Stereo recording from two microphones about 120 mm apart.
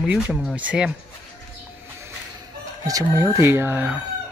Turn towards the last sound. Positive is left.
turn(degrees=-15)  # may be behind; listen again after turning